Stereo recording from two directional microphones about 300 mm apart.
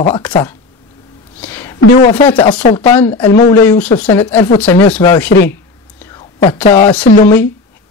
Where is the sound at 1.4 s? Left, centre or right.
Centre.